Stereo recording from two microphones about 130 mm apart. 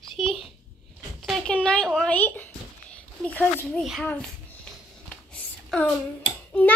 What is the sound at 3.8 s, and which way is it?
Speech, centre (ahead or behind).